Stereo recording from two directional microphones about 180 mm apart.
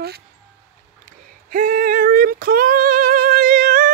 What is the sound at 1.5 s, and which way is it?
Female singing, 50° right (ahead or behind).